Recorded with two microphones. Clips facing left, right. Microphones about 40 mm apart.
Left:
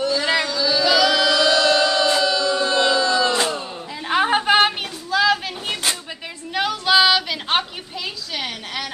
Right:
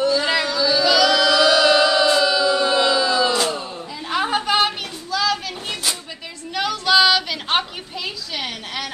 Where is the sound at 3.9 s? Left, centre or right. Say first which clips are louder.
Left 3 dB; left.